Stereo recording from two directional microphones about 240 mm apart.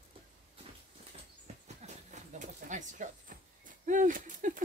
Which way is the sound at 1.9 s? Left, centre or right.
Right.